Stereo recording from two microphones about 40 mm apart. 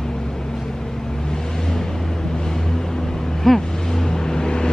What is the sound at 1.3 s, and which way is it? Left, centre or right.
Vehicle, centre.